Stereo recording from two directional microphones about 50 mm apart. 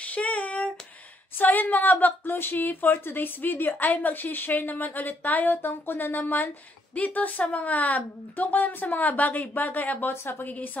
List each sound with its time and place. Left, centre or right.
0.0 s a sound: left
1.4 s a woman's voice: left
10.2 s a woman's voice: left
10.5 s a woman's voice: left